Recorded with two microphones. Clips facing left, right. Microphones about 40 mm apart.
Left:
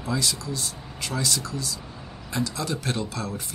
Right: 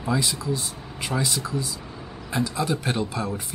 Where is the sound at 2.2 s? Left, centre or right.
Centre.